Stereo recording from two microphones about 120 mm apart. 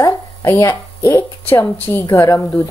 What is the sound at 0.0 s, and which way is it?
A woman's voice, 25° left (ahead or behind).